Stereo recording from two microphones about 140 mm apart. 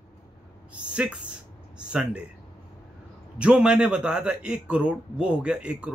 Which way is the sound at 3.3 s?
5° right (ahead or behind).